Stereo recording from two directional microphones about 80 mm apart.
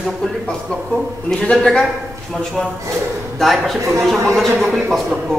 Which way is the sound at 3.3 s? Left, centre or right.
Centre.